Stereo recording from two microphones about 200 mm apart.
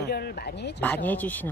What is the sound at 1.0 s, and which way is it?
Speech, 10° left (ahead or behind).